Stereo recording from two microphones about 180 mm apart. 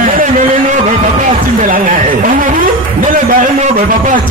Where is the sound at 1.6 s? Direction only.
50° right (ahead or behind).